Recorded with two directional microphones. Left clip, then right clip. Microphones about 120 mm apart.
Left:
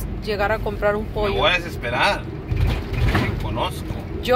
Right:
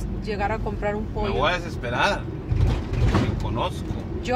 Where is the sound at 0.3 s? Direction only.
10° left (ahead or behind).